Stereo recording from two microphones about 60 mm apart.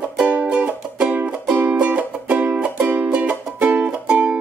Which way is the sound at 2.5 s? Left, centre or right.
Centre.